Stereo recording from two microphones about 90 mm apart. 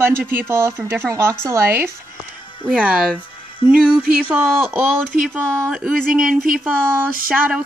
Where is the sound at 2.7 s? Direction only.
15° right (ahead or behind).